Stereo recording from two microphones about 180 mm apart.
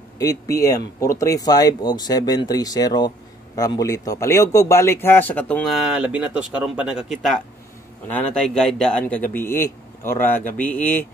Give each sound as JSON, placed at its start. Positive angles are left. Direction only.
{"t": 0.2, "sound": "a man's voice", "side_deg": 20}